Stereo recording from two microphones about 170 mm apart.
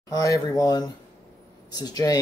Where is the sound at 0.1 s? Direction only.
20° left (ahead or behind).